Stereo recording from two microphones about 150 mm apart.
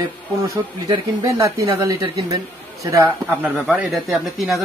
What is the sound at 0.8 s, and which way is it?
A man's voice, 25° right (ahead or behind).